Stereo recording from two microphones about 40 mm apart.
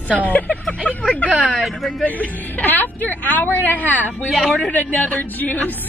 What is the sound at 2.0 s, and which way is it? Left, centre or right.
A woman's voice, left.